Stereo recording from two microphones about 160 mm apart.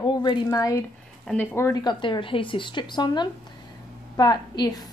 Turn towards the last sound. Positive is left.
turn(degrees=25)  # may be behind; listen again after turning